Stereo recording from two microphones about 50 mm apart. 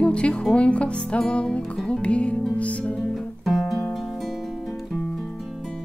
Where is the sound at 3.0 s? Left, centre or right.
Centre.